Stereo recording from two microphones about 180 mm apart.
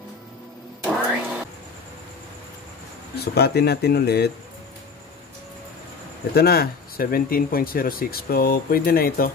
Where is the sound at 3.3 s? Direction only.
65° left (ahead or behind).